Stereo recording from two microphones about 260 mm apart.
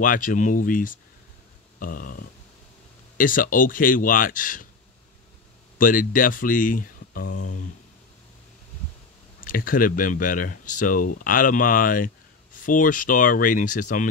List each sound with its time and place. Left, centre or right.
0.0 s speech: left
5.8 s speech: left
9.4 s speech: left